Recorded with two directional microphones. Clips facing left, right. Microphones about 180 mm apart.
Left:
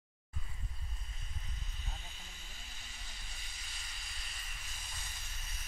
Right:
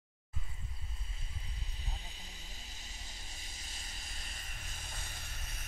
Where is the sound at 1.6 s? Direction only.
35° right (ahead or behind).